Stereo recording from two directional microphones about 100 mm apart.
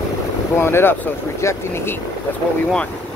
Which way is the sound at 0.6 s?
25° left (ahead or behind).